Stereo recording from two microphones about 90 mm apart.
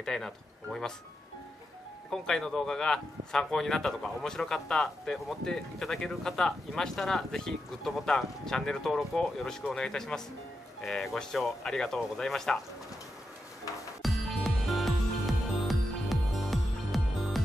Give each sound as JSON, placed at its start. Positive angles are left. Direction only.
{"t": 0.0, "sound": "speech", "side_deg": 5}
{"t": 2.2, "sound": "speech", "side_deg": 5}
{"t": 14.0, "sound": "music", "side_deg": 0}